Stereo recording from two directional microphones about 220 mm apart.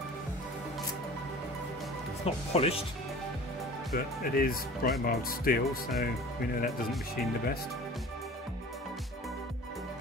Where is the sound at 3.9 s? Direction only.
40° left (ahead or behind).